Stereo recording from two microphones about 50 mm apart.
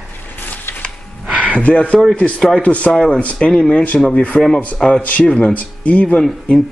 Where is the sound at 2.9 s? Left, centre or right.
Centre.